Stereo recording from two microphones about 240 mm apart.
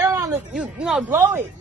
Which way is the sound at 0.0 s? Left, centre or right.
Centre.